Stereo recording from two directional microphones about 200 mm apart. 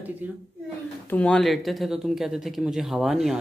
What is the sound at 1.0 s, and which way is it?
Speech, 5° left (ahead or behind).